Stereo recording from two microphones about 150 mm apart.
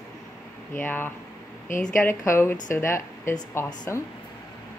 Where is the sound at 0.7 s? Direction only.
15° left (ahead or behind).